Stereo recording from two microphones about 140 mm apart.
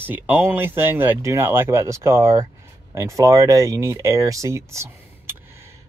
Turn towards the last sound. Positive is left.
turn(degrees=-20)  # may be behind; listen again after turning